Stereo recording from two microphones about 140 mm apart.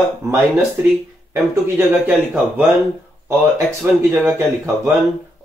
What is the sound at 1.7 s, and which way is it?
Speech, 15° right (ahead or behind).